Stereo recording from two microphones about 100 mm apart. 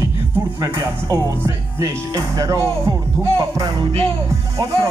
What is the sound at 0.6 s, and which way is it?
Speech, 35° right (ahead or behind).